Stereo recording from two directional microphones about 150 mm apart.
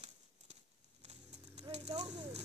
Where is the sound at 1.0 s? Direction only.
50° right (ahead or behind).